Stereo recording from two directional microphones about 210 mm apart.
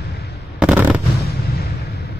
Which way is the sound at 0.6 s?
5° right (ahead or behind).